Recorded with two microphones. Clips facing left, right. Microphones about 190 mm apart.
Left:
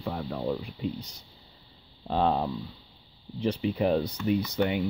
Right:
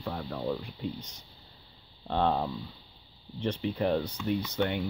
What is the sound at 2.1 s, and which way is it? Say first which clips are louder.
Speech: left 2 dB; 5° left (ahead or behind).